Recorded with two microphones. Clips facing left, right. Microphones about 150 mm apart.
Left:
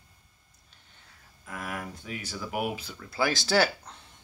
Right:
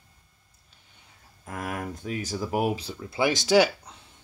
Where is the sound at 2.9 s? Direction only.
20° right (ahead or behind).